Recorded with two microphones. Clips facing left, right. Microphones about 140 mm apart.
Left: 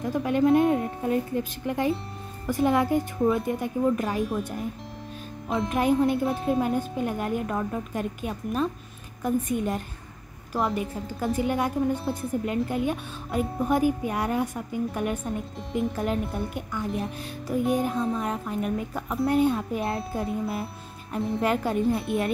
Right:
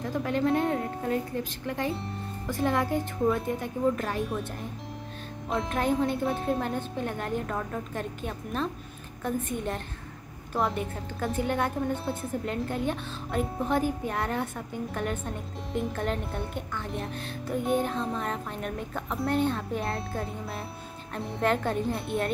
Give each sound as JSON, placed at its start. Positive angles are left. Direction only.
{"t": 0.1, "sound": "a woman's voice", "side_deg": 15}
{"t": 5.5, "sound": "a woman's voice", "side_deg": 0}